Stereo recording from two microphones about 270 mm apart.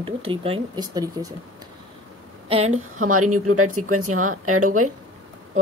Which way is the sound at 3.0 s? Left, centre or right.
Right.